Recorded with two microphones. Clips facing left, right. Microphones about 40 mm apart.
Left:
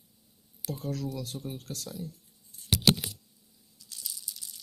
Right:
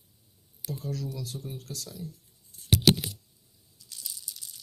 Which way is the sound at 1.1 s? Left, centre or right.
Left.